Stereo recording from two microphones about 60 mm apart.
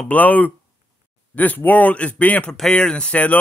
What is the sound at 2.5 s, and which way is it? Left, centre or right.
Speech, centre.